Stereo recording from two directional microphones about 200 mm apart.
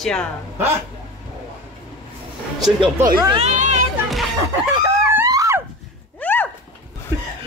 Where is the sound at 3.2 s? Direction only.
30° right (ahead or behind).